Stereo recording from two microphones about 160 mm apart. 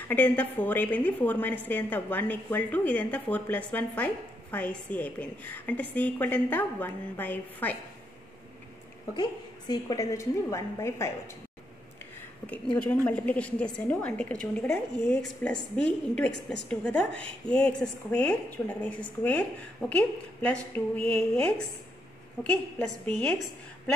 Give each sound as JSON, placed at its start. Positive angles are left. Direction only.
{"t": 0.1, "sound": "speech", "side_deg": 10}
{"t": 9.1, "sound": "a woman's voice", "side_deg": 25}
{"t": 12.7, "sound": "a woman's voice", "side_deg": 5}